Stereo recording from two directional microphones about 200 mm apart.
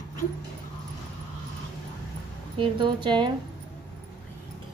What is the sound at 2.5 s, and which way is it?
Speech, 25° right (ahead or behind).